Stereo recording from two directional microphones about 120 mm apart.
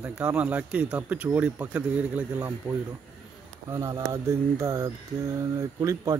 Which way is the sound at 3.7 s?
25° right (ahead or behind).